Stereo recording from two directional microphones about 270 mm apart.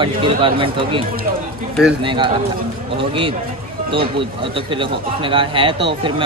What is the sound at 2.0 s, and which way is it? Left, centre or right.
A man's voice, centre.